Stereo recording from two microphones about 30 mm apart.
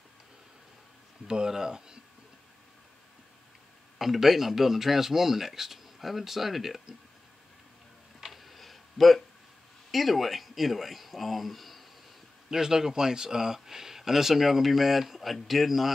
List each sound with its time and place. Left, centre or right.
1.2 s speech: right
4.0 s speech: centre
8.3 s a sound: centre
9.8 s speech: centre
12.4 s speech: centre